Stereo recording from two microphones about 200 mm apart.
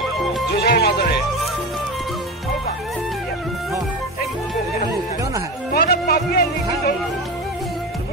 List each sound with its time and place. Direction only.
0.6 s speech: 55° left (ahead or behind)
5.7 s music: 50° left (ahead or behind)